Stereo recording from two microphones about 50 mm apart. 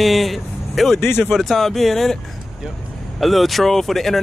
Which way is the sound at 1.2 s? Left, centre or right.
Centre.